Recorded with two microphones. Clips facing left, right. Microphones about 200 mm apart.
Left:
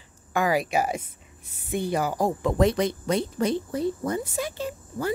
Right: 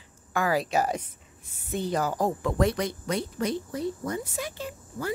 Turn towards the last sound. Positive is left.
turn(degrees=30)  # may be behind; listen again after turning